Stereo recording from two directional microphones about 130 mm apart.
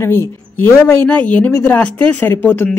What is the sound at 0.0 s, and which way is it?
Speech, 20° left (ahead or behind).